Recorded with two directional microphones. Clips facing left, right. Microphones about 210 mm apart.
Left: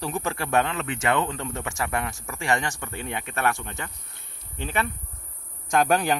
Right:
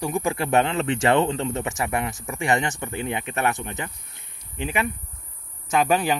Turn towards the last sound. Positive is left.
turn(degrees=0)  # may be behind; listen again after turning